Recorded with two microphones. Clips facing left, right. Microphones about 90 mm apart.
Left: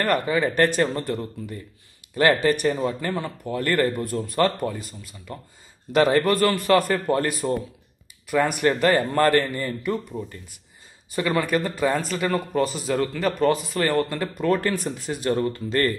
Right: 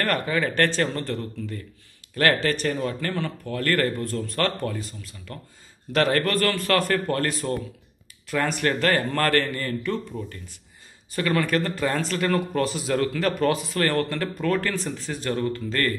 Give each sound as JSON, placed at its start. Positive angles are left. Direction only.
{"t": 0.0, "sound": "a man's voice", "side_deg": 10}